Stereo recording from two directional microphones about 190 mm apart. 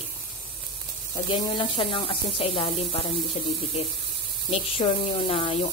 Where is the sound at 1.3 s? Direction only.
25° left (ahead or behind).